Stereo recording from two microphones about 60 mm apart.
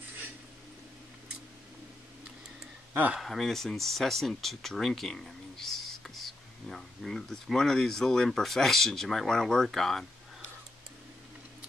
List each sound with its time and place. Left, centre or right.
2.9 s speech: right
3.2 s speech: centre